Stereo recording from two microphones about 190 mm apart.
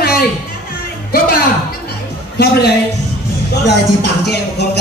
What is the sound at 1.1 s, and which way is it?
Music, 50° left (ahead or behind).